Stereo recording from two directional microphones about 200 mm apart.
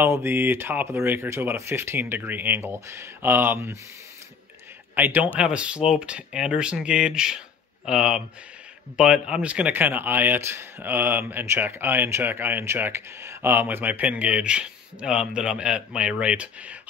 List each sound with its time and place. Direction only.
0.0 s a man's voice: 10° right (ahead or behind)
4.9 s a man's voice: 10° right (ahead or behind)